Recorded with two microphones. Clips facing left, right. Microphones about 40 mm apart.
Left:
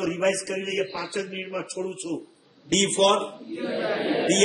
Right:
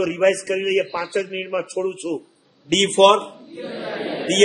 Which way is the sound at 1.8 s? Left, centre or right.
Right.